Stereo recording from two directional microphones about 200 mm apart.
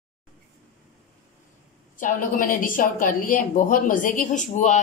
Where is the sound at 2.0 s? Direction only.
40° left (ahead or behind).